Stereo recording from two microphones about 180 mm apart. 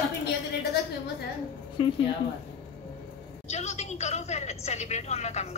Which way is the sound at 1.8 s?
30° left (ahead or behind).